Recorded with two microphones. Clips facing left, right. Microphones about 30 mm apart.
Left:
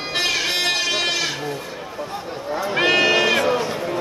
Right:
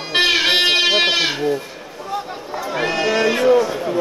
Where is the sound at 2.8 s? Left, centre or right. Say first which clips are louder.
Left 1 dB; left.